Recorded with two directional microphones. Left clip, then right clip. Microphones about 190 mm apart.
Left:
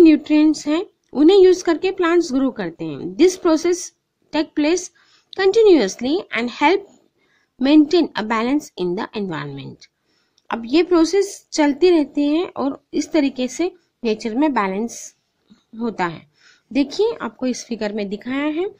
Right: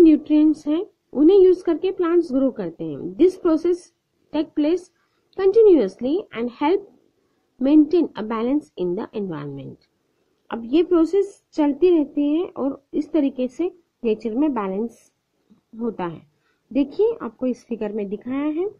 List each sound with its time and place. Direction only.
0.0 s a woman's voice: 10° left (ahead or behind)